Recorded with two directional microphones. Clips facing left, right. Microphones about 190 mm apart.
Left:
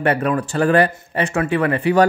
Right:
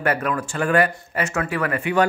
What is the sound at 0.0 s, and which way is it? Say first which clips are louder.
Speech: left 4 dB; 30° left (ahead or behind).